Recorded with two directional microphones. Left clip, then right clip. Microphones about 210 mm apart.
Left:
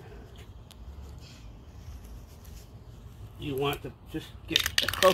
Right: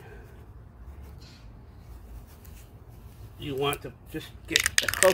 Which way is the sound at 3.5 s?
Centre (ahead or behind).